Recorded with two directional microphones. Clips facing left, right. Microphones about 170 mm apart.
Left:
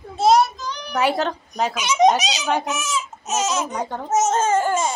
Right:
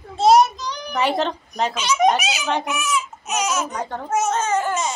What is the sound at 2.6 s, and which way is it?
Speech, 20° left (ahead or behind).